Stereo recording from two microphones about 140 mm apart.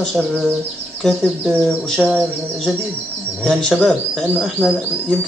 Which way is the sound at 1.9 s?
Centre (ahead or behind).